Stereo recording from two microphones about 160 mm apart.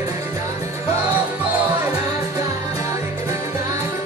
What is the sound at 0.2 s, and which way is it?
Music, 20° right (ahead or behind).